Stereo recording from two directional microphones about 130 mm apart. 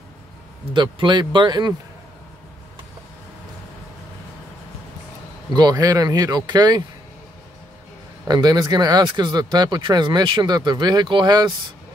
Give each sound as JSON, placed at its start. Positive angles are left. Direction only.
{"t": 0.7, "sound": "speech", "side_deg": -35}
{"t": 5.5, "sound": "speech", "side_deg": -30}
{"t": 8.3, "sound": "speech", "side_deg": -30}